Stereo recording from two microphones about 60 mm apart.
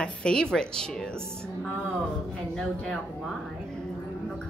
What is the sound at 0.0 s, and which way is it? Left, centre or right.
A woman's voice, centre.